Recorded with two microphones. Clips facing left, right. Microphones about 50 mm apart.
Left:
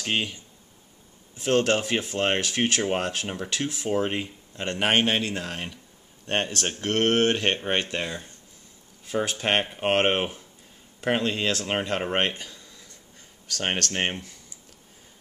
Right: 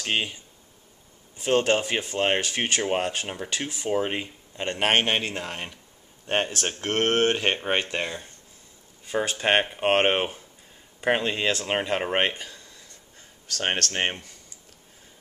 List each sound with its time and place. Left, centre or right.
0.0 s speech: centre
1.4 s speech: centre
4.9 s a man's voice: right
5.3 s speech: centre
13.6 s speech: centre